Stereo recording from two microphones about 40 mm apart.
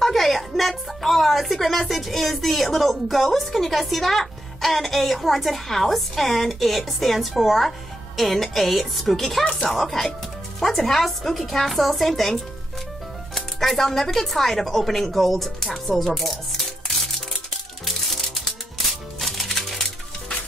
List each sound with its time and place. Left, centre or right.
0.0 s a woman's voice: centre
9.4 s speech: left
9.7 s speech: centre
17.8 s music: centre